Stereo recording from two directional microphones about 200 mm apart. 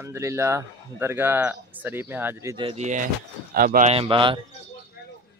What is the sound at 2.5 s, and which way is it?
Speech, 30° right (ahead or behind).